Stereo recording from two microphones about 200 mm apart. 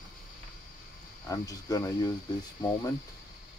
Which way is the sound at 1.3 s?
15° left (ahead or behind).